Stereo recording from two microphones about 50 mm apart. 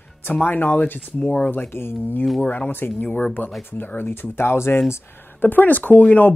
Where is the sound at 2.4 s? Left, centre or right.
Left.